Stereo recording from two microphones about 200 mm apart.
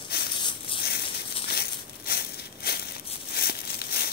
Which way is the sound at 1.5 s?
50° left (ahead or behind).